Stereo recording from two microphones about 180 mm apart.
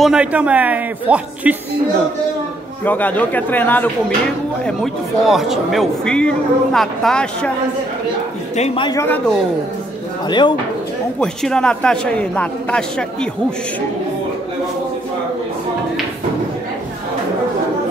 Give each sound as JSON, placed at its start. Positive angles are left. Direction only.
{"t": 0.0, "sound": "speech", "side_deg": -5}
{"t": 2.8, "sound": "speech", "side_deg": 10}
{"t": 8.5, "sound": "a man's voice", "side_deg": 35}
{"t": 8.8, "sound": "speech", "side_deg": 15}
{"t": 10.2, "sound": "speech", "side_deg": 25}
{"t": 11.1, "sound": "speech", "side_deg": 5}